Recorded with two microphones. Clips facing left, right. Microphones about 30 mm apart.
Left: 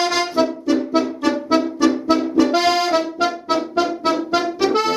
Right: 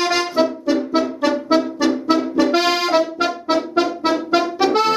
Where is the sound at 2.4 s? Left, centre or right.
Centre.